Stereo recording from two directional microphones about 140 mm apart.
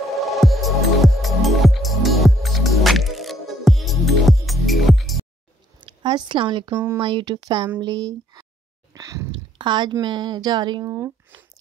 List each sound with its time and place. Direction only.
0.1 s music: centre (ahead or behind)
5.8 s a sound: 35° right (ahead or behind)
6.7 s speech: 15° right (ahead or behind)
7.0 s speech: 35° right (ahead or behind)
8.9 s sigh: 25° right (ahead or behind)
9.3 s a woman's voice: 35° right (ahead or behind); by 11.4 s 20° right (ahead or behind)